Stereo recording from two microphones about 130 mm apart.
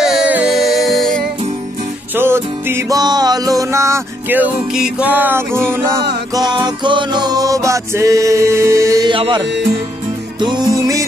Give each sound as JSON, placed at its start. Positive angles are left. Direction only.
{"t": 0.0, "sound": "music", "side_deg": -5}
{"t": 2.1, "sound": "music", "side_deg": -15}
{"t": 3.0, "sound": "music", "side_deg": -30}
{"t": 4.7, "sound": "music", "side_deg": -5}
{"t": 6.3, "sound": "music", "side_deg": -35}
{"t": 9.0, "sound": "music", "side_deg": -40}